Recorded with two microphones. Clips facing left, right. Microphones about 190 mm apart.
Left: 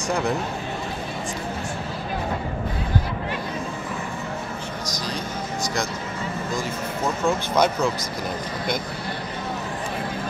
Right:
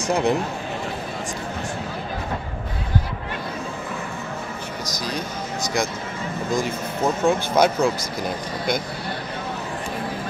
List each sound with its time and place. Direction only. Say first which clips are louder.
0.1 s speech: right 4 dB; 20° right (ahead or behind)
7.2 s speech: right 2 dB; 10° right (ahead or behind)